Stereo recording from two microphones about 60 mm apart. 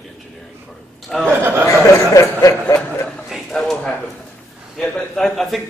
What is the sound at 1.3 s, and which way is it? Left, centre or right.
Speech, right.